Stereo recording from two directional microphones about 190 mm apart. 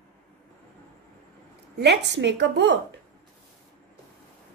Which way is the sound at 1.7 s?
65° right (ahead or behind).